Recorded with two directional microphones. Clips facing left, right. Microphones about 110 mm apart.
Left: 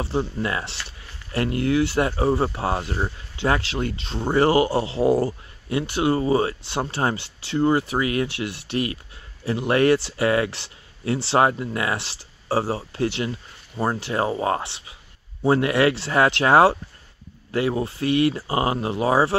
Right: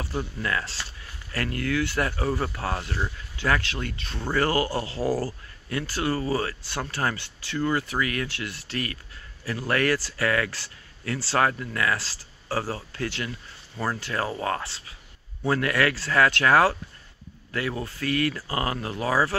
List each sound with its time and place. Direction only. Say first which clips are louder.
0.0 s speech: left 6 dB; 25° left (ahead or behind)